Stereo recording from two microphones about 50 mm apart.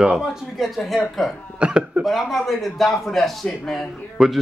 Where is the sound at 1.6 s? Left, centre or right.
Right.